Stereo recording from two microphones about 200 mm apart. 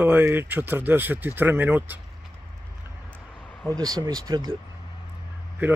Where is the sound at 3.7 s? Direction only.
20° right (ahead or behind).